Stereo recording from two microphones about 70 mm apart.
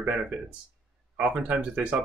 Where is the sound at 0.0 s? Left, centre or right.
Centre.